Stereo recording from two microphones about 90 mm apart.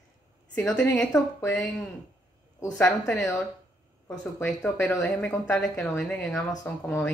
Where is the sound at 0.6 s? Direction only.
15° left (ahead or behind).